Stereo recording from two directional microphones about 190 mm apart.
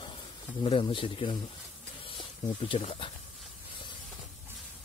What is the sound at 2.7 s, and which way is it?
Speech, 30° left (ahead or behind).